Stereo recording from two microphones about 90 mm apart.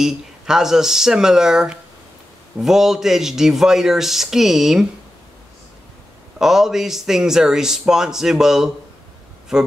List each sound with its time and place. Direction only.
0.0 s a man's voice: 5° right (ahead or behind)
6.3 s a man's voice: 5° right (ahead or behind)